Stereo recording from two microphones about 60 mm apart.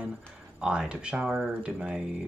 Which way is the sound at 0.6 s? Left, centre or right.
Centre.